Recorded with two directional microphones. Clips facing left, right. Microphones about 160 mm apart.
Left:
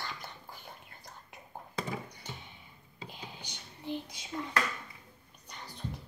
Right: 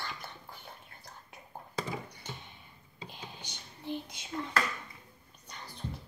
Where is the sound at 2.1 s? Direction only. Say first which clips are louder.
Right 1 dB; 15° left (ahead or behind).